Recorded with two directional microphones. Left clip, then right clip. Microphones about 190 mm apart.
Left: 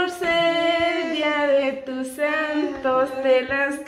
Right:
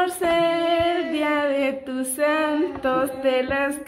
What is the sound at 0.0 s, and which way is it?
Female singing, 35° right (ahead or behind).